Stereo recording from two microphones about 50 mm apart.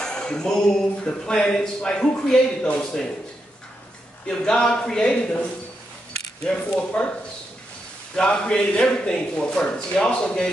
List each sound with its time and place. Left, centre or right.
0.0 s speech: centre
4.3 s speech: centre
6.4 s speech: left
8.2 s speech: centre